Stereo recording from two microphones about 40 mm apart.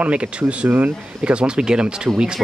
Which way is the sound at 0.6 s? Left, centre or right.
Right.